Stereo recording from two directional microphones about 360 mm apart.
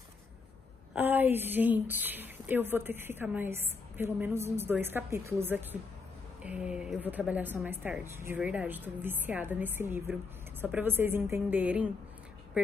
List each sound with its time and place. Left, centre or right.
0.9 s speech: centre